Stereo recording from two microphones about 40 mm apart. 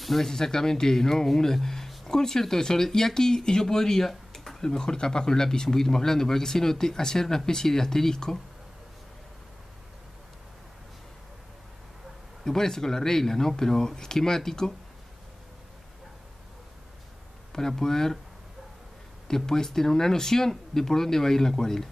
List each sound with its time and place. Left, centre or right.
0.0 s speech: centre
12.4 s speech: centre
17.5 s speech: centre
19.2 s speech: centre